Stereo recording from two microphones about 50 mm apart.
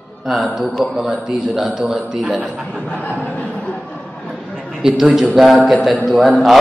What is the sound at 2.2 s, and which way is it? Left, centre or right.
Speech, right.